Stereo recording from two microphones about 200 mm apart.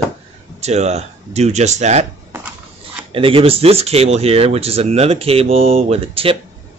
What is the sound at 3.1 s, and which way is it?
Speech, 25° right (ahead or behind).